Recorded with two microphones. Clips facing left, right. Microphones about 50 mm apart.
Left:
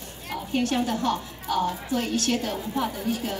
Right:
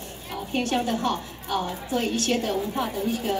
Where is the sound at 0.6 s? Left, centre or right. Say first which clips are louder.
Even; right.